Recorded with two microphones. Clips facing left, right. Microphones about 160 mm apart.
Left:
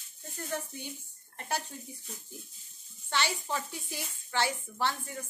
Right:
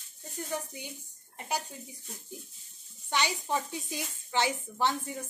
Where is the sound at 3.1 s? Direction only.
15° right (ahead or behind).